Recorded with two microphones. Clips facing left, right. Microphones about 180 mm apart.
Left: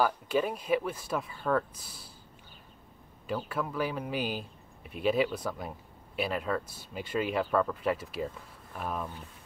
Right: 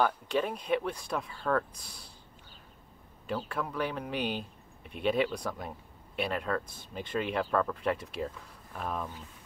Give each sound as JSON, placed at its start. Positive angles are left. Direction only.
{"t": 0.0, "sound": "speech", "side_deg": 5}
{"t": 3.3, "sound": "speech", "side_deg": 5}